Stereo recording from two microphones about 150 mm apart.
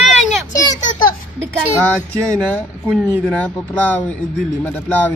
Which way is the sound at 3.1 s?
10° left (ahead or behind).